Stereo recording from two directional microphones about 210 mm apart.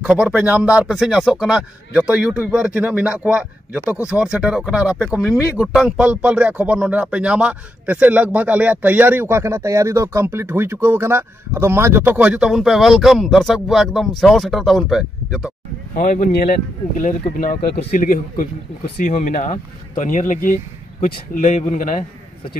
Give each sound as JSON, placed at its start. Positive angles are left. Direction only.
{"t": 0.0, "sound": "speech", "side_deg": -5}
{"t": 16.1, "sound": "speech", "side_deg": 45}
{"t": 21.5, "sound": "speech", "side_deg": 35}